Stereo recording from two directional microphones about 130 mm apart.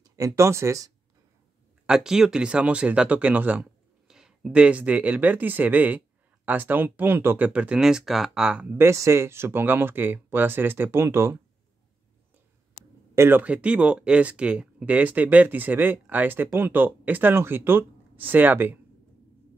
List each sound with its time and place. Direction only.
0.0 s speech: 25° right (ahead or behind)
1.9 s speech: 5° right (ahead or behind)
8.7 s speech: 20° right (ahead or behind)
13.1 s speech: 20° right (ahead or behind)